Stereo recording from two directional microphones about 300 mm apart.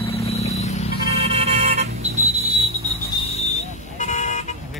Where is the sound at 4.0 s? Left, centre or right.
Left.